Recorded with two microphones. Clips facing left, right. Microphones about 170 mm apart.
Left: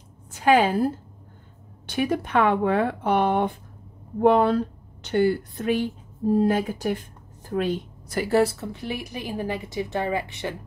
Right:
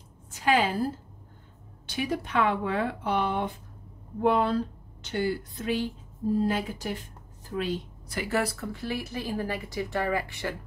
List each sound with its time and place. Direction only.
0.3 s a woman's voice: 55° left (ahead or behind)
8.2 s speech: 30° left (ahead or behind)